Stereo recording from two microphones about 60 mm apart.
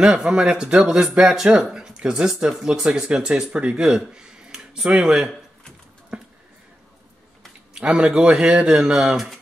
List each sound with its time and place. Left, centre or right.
0.0 s speech: centre
6.1 s a sound: centre
7.7 s speech: centre
9.1 s speech: centre